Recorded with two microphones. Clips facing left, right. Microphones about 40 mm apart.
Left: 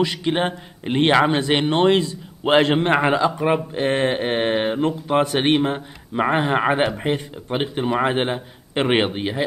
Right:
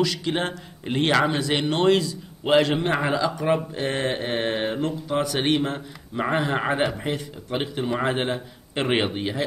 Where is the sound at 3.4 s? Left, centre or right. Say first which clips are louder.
Left 3 dB; left.